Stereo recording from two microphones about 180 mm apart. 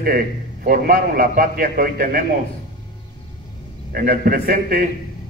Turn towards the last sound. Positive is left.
turn(degrees=-55)  # may be behind; listen again after turning